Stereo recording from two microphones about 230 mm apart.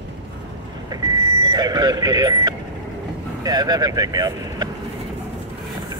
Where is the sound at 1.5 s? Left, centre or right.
Centre.